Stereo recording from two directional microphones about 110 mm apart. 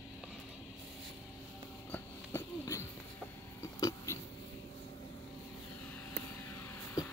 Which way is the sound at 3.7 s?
30° left (ahead or behind).